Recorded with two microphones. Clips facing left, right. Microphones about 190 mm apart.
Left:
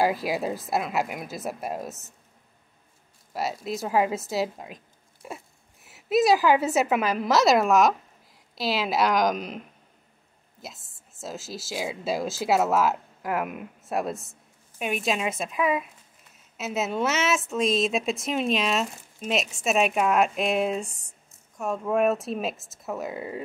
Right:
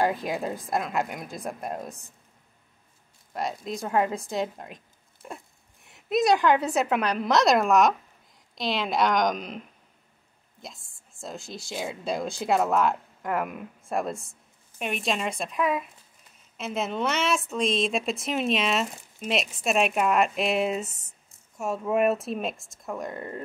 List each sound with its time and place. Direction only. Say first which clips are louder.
0.0 s a woman's voice: left 2 dB; 5° left (ahead or behind)
3.3 s a woman's voice: left 2 dB; 5° left (ahead or behind)
10.6 s a woman's voice: left 1 dB; 5° left (ahead or behind)